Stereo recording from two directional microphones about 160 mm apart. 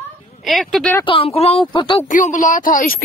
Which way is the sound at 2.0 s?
50° left (ahead or behind).